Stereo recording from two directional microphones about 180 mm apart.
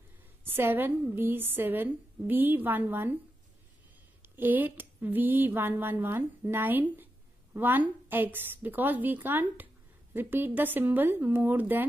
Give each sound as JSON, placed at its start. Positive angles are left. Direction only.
{"t": 0.4, "sound": "speech", "side_deg": -10}
{"t": 4.2, "sound": "speech", "side_deg": -10}